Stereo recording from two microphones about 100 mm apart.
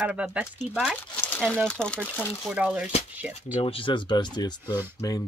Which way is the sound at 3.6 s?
60° left (ahead or behind).